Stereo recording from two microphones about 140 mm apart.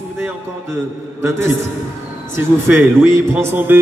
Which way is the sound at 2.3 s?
15° right (ahead or behind).